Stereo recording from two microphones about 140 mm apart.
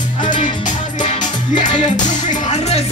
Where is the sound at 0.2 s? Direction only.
65° left (ahead or behind).